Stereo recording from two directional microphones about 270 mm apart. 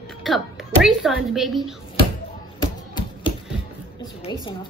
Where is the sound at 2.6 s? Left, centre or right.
Centre.